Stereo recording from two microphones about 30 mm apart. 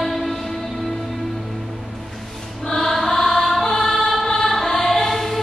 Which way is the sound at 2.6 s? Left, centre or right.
Centre.